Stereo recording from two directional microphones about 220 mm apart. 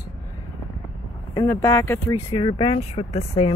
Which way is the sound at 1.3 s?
10° left (ahead or behind).